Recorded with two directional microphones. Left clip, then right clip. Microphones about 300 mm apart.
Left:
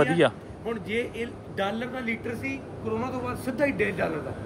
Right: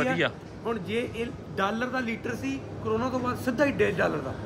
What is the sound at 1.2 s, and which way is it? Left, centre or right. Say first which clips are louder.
Speech: right 1 dB; centre.